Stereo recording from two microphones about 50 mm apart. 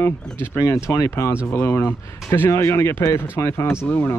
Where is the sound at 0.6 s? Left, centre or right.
Left.